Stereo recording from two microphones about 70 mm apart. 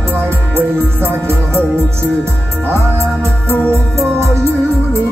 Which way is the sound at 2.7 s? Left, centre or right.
Right.